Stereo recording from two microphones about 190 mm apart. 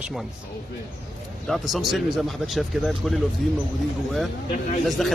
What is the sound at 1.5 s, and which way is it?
Speech, centre (ahead or behind).